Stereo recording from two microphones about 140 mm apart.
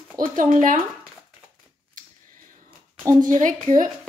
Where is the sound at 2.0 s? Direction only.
70° right (ahead or behind).